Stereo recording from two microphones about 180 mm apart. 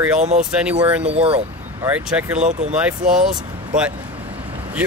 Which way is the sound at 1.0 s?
35° right (ahead or behind).